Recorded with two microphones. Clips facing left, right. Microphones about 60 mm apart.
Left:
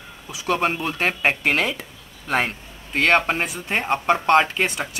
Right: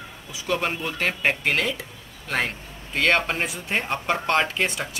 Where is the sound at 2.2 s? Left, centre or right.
Centre.